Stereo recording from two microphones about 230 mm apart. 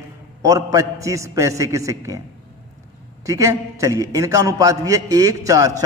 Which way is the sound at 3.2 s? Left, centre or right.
Centre.